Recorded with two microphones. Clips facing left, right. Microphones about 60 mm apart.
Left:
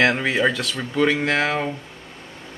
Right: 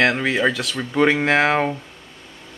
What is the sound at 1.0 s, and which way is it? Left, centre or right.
Speech, centre.